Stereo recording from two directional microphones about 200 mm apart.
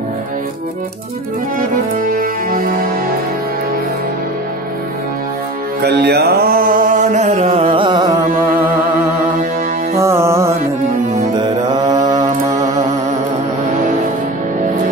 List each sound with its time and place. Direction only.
2.0 s music: 45° right (ahead or behind)
5.8 s mantra: 55° right (ahead or behind); by 8.3 s 20° right (ahead or behind)
9.9 s music: 15° right (ahead or behind)